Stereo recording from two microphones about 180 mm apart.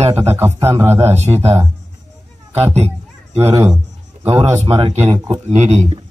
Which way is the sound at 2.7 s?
35° right (ahead or behind).